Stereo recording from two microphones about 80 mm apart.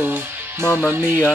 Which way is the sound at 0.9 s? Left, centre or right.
Right.